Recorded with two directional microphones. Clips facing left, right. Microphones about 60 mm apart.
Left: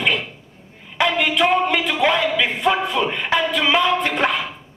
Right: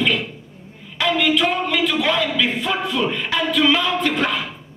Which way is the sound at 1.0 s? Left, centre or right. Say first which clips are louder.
Even; left.